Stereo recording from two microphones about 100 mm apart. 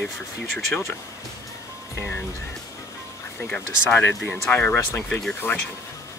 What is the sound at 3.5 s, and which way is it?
Speech, 15° left (ahead or behind).